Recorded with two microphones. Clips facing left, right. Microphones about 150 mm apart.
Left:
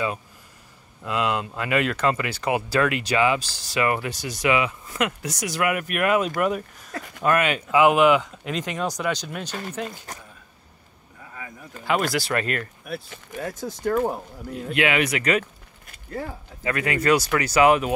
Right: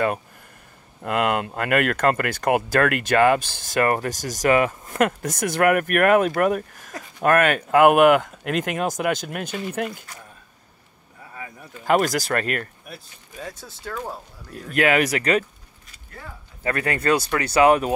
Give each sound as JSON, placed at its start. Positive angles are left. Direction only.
{"t": 1.0, "sound": "speech", "side_deg": -55}
{"t": 11.8, "sound": "speech", "side_deg": -45}
{"t": 13.4, "sound": "speech", "side_deg": 10}
{"t": 14.7, "sound": "speech", "side_deg": -45}
{"t": 16.6, "sound": "speech", "side_deg": -35}